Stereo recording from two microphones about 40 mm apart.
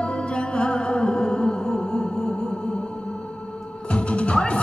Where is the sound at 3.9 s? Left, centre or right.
Left.